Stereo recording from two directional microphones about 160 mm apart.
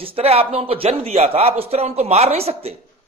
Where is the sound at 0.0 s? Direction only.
40° right (ahead or behind).